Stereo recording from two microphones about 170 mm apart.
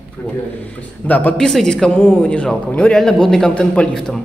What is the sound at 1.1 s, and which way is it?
A man's voice, 10° left (ahead or behind).